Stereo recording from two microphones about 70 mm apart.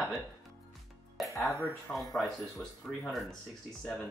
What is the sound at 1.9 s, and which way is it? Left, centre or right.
Speech, centre.